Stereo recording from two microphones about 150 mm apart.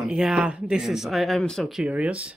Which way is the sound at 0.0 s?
5° right (ahead or behind).